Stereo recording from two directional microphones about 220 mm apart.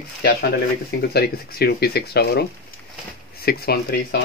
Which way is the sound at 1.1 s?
45° left (ahead or behind).